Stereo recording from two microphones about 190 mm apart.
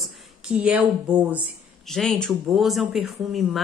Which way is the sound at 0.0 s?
5° right (ahead or behind).